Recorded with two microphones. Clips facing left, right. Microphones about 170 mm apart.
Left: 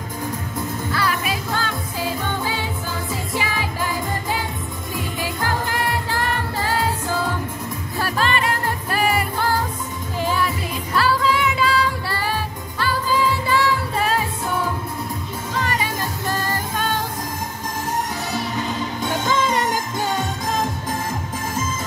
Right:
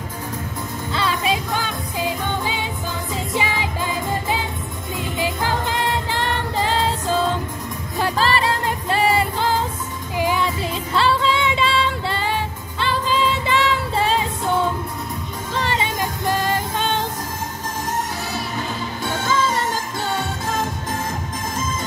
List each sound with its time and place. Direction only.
0.9 s music: 25° right (ahead or behind)
10.4 s music: 25° right (ahead or behind)
15.5 s music: 30° right (ahead or behind)
19.2 s music: 15° left (ahead or behind)